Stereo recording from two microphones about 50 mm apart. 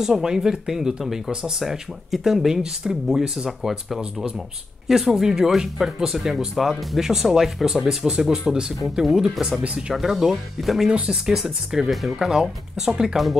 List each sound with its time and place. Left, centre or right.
0.0 s speech: centre
9.0 s speech: centre
9.9 s speech: centre